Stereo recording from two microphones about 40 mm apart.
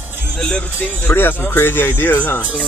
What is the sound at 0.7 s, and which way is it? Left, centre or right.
Speech, left.